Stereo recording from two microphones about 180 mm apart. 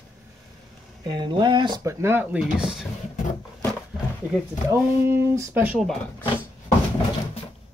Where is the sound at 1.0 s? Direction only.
25° right (ahead or behind).